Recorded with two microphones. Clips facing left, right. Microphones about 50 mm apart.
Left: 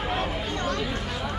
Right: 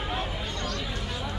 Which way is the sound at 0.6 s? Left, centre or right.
Left.